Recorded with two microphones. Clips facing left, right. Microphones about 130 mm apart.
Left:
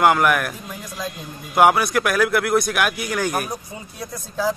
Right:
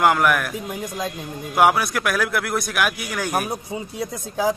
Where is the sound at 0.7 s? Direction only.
20° right (ahead or behind).